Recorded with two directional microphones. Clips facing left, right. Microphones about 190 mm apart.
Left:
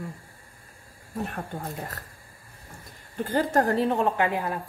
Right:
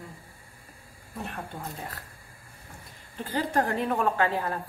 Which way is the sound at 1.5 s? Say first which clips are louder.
Left 4 dB; 45° left (ahead or behind).